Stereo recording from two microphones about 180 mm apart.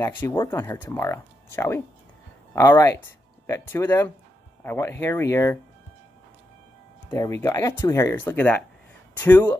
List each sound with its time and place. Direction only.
0.0 s speech: 10° left (ahead or behind)
7.1 s speech: 15° left (ahead or behind)